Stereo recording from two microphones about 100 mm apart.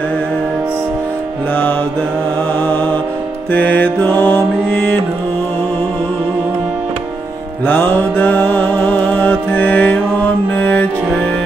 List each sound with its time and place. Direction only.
2.6 s music: 20° left (ahead or behind)
7.6 s music: 20° left (ahead or behind)